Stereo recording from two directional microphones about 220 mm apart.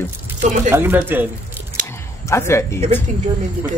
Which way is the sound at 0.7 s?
10° right (ahead or behind).